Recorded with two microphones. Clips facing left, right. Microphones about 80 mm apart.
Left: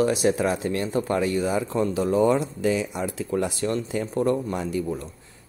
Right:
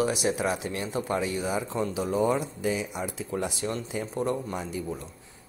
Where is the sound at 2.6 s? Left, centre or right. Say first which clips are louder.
Left 5 dB; left.